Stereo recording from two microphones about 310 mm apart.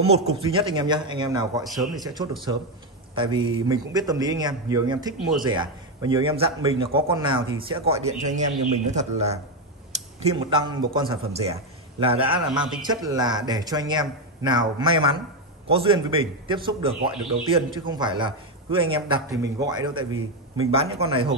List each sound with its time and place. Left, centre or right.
0.0 s a man's voice: centre
1.6 s speech: centre
3.2 s a man's voice: centre
12.5 s speech: centre
12.8 s a man's voice: centre